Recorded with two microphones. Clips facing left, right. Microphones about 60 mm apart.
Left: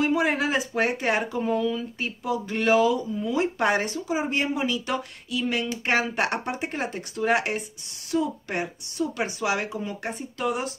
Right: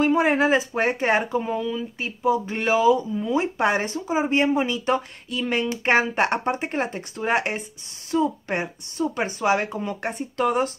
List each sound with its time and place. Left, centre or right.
0.0 s speech: right
1.4 s speech: centre
2.2 s speech: right